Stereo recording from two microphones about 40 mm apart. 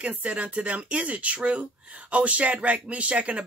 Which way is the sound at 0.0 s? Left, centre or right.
Right.